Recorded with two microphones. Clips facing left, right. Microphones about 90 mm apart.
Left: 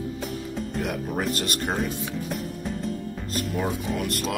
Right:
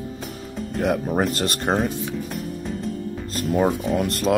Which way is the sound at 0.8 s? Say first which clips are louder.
Right 8 dB; 35° right (ahead or behind).